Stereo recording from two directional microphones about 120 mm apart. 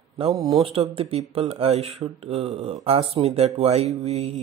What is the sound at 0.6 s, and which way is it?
Speech, 55° right (ahead or behind).